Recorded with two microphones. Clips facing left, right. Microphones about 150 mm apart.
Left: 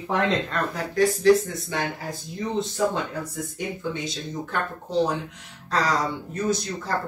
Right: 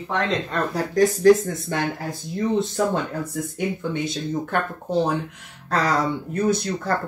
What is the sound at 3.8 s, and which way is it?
Speech, 55° right (ahead or behind).